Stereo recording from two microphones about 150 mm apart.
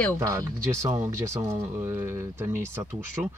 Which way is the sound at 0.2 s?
20° right (ahead or behind).